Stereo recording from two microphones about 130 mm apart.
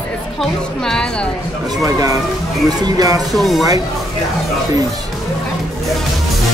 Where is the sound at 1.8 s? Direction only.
25° right (ahead or behind).